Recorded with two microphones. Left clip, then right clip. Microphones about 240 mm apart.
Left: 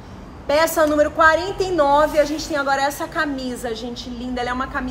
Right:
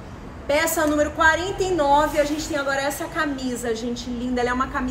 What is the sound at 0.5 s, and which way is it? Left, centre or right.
A woman's voice, centre.